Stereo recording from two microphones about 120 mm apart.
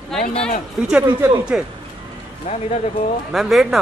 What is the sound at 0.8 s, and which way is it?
Speech, 10° right (ahead or behind).